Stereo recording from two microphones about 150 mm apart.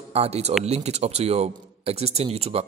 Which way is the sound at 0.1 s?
45° right (ahead or behind).